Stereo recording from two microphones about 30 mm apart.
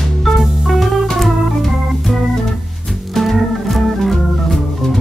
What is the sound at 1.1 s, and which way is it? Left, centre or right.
Organ, centre.